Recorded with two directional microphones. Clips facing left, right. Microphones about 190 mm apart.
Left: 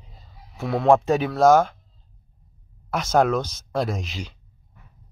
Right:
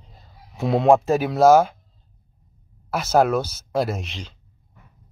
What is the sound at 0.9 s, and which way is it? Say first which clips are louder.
Speech: right 1 dB; 5° right (ahead or behind).